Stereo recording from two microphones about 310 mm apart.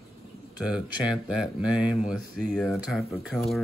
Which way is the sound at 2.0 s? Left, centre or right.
Centre.